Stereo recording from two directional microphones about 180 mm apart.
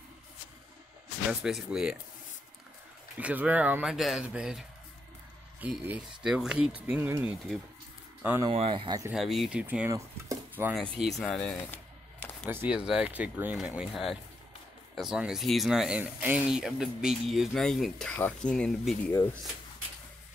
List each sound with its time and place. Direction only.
1.4 s speech: 5° right (ahead or behind)
3.2 s speech: 5° right (ahead or behind)
8.5 s speech: 30° right (ahead or behind)
9.1 s speech: centre (ahead or behind)
11.0 s speech: centre (ahead or behind)
12.4 s speech: 10° right (ahead or behind)